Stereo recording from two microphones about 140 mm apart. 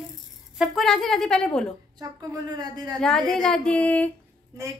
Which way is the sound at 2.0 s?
30° right (ahead or behind).